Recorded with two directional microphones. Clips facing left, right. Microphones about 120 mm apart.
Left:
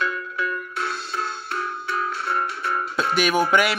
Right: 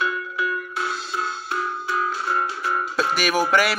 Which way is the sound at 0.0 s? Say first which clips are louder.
Right 1 dB; 20° right (ahead or behind).